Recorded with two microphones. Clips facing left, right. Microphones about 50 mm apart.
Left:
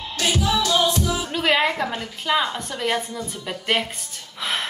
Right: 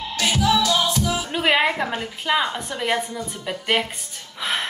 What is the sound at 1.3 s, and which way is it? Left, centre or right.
A woman's voice, centre.